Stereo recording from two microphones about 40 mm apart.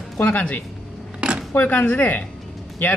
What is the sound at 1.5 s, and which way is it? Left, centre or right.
Speech, left.